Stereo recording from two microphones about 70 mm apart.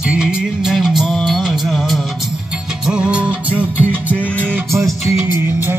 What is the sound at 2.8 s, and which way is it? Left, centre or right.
Music, centre.